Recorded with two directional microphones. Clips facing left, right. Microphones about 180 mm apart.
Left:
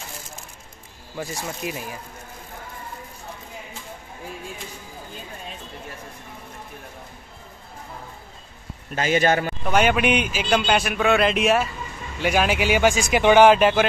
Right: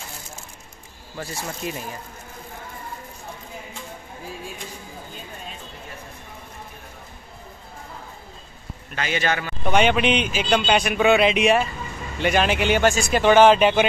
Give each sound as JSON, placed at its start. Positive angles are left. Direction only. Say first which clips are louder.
{"t": 1.1, "sound": "speech", "louder": "left 1 dB", "side_deg": 15}
{"t": 8.9, "sound": "a man's voice", "louder": "left 5 dB", "side_deg": 40}
{"t": 9.7, "sound": "a man's voice", "louder": "right 1 dB", "side_deg": 5}
{"t": 13.6, "sound": "a man's voice", "louder": "even", "side_deg": 0}